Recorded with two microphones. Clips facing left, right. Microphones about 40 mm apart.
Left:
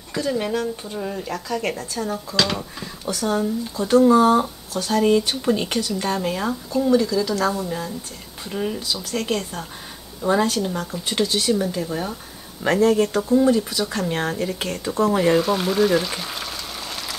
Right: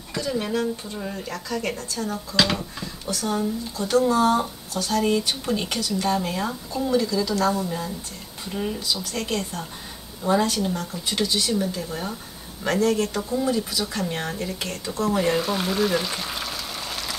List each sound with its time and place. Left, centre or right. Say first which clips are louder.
0.1 s speech: left 3 dB; centre
2.3 s speech: right 1 dB; centre
2.8 s a sound: left 3 dB; centre
3.7 s speech: left 6 dB; centre
15.3 s boiling: left 5 dB; centre